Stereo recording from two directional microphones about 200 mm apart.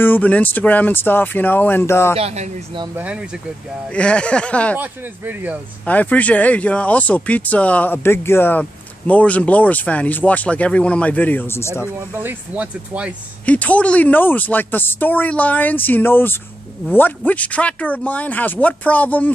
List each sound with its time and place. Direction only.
0.0 s speech: 10° left (ahead or behind)
2.1 s speech: 30° right (ahead or behind)
3.0 s speech: 5° right (ahead or behind)
3.9 s speech: 5° left (ahead or behind)
4.7 s speech: 10° right (ahead or behind)
5.9 s speech: 5° left (ahead or behind)
12.2 s speech: 10° right (ahead or behind)
13.5 s speech: 5° left (ahead or behind)